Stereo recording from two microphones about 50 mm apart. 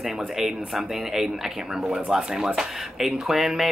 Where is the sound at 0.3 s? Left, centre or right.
Centre.